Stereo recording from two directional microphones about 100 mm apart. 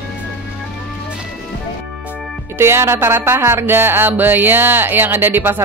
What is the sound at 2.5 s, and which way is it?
Speech, 25° right (ahead or behind).